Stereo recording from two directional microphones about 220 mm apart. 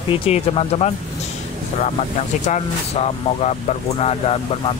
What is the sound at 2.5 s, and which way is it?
Speech, 30° left (ahead or behind).